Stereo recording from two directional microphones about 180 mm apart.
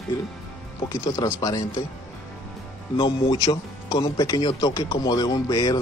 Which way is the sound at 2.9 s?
25° left (ahead or behind).